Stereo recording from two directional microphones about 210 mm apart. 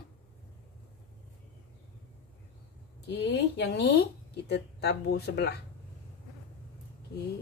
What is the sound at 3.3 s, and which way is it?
Speech, 55° left (ahead or behind).